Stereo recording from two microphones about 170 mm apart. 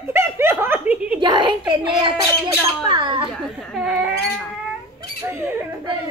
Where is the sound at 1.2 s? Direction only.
25° right (ahead or behind).